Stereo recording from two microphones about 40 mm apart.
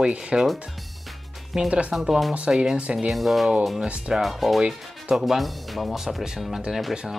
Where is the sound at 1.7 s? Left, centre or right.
Right.